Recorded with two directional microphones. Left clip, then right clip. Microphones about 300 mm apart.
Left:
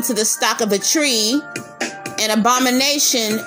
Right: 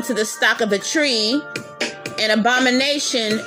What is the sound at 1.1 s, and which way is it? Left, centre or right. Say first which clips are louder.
Speech: left 1 dB; left.